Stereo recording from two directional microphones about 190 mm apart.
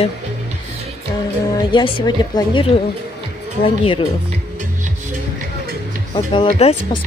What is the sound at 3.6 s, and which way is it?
Speech, 30° left (ahead or behind).